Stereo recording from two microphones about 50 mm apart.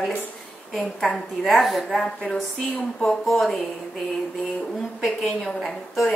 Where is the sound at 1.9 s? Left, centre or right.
Centre.